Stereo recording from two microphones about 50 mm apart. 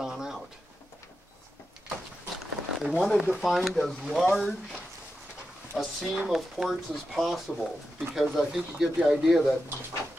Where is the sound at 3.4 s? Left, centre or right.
Centre.